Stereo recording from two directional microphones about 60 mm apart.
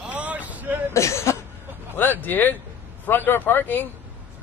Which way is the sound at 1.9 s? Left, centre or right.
Left.